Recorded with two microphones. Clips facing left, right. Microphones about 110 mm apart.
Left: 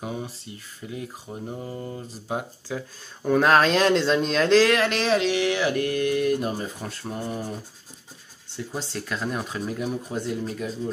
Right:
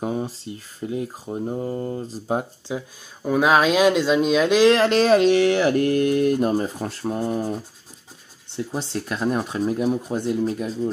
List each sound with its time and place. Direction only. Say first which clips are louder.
0.0 s speech: right 7 dB; 35° right (ahead or behind)
2.7 s speech: right 3 dB; 20° right (ahead or behind)
3.2 s speech: right 1 dB; 5° right (ahead or behind)
4.6 s speech: right 6 dB; 30° right (ahead or behind)
8.9 s speech: right 6 dB; 25° right (ahead or behind)